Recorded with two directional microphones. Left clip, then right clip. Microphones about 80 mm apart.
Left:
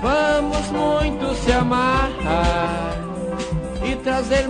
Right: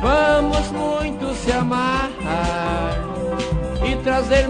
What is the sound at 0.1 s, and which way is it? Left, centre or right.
Music, right.